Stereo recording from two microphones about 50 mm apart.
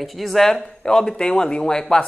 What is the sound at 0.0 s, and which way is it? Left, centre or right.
Speech, centre.